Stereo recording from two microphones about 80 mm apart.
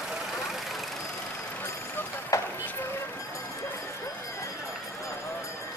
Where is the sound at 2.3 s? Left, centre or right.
Left.